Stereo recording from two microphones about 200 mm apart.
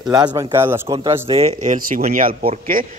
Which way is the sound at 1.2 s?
30° right (ahead or behind).